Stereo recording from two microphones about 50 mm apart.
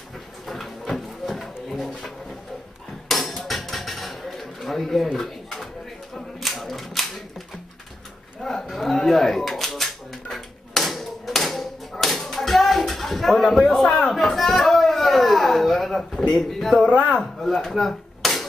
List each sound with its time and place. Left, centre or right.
0.5 s drawer open or close: centre
3.1 s hammer: centre
6.1 s typewriter: centre
8.4 s a sound: centre
12.2 s music: centre
13.2 s a sound: centre